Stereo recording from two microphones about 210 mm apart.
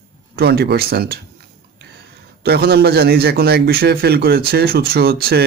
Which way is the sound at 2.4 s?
50° right (ahead or behind).